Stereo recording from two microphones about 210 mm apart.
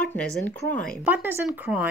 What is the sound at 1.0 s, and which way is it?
Speech, 10° right (ahead or behind).